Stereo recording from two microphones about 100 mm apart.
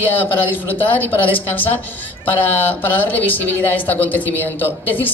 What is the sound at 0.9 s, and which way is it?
Speech, 20° left (ahead or behind).